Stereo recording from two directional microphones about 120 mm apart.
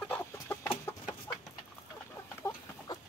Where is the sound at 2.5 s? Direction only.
20° left (ahead or behind).